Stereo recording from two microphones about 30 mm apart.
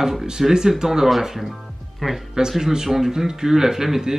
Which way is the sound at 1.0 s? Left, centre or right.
Centre.